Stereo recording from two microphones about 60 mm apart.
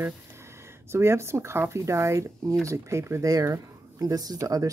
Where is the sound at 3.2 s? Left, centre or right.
Right.